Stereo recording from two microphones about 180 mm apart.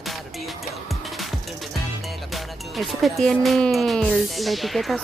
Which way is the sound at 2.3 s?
Centre (ahead or behind).